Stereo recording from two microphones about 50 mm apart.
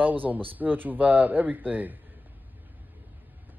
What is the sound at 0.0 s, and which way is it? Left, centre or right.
Speech, right.